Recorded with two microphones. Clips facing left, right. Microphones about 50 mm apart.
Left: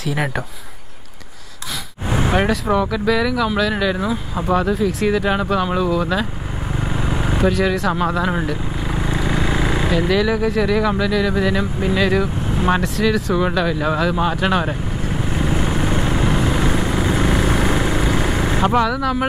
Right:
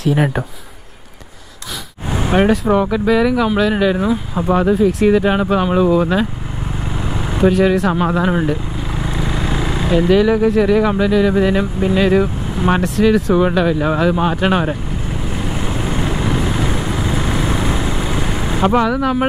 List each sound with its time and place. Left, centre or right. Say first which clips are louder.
0.0 s speech: right 6 dB; centre
2.7 s speech: right 3 dB; centre
6.8 s vehicle: left 2 dB; centre
7.4 s speech: right 6 dB; centre
8.9 s vehicle: left 1 dB; centre
9.8 s speech: right 7 dB; centre
15.2 s vehicle: left 3 dB; centre
18.0 s vehicle: left 1 dB; centre
18.6 s speech: right 3 dB; centre
18.9 s speech: right 3 dB; centre